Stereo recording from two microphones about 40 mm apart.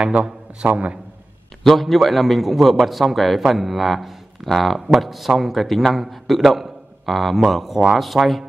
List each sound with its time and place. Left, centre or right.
0.0 s a man's voice: right
1.6 s a man's voice: centre